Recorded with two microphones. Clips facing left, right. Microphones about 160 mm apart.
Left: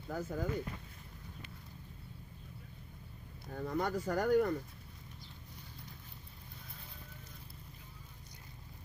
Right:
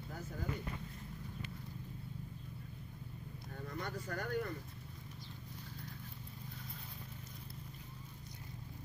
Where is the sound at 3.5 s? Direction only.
75° left (ahead or behind).